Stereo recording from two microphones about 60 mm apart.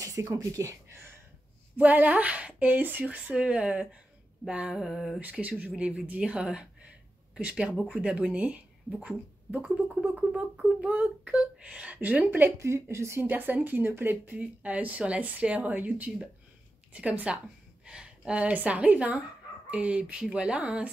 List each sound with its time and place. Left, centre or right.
0.0 s speech: right
1.8 s speech: right
4.7 s speech: centre
5.2 s speech: right
10.3 s a sound: right
11.3 s speech: centre
12.5 s speech: right
13.3 s speech: right